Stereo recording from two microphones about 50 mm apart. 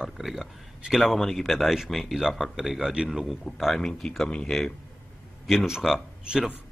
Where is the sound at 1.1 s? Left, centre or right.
Centre.